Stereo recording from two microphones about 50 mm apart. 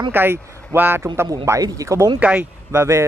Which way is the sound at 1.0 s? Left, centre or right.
Right.